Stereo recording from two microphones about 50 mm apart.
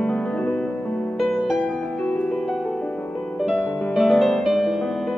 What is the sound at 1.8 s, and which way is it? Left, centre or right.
Music, centre.